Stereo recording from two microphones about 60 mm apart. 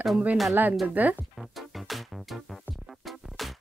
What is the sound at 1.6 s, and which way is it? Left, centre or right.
Music, centre.